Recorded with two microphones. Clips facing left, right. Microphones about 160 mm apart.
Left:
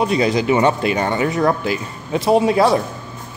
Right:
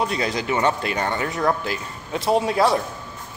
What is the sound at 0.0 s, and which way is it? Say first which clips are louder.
Speech: left 7 dB; 15° left (ahead or behind).